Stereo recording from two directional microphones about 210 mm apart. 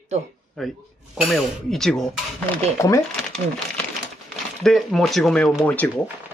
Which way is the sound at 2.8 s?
15° left (ahead or behind).